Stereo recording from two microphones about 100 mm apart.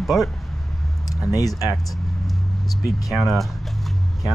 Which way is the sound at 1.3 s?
40° left (ahead or behind).